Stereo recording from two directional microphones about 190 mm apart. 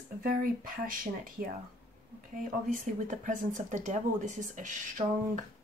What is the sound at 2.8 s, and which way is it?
Speech, 40° right (ahead or behind).